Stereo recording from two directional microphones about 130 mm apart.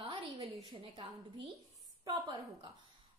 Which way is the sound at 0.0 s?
40° right (ahead or behind).